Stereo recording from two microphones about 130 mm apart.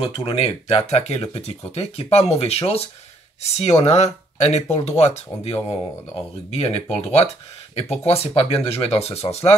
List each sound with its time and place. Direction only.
0.0 s speech: 45° left (ahead or behind)